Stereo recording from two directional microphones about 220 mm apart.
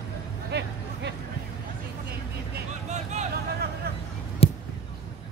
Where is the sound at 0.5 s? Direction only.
50° right (ahead or behind).